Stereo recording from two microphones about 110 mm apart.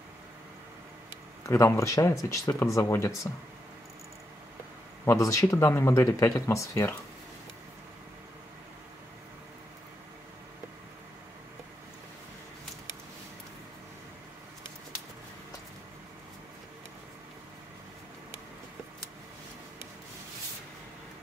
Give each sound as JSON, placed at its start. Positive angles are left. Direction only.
{"t": 1.4, "sound": "speech", "side_deg": 25}
{"t": 5.0, "sound": "speech", "side_deg": 30}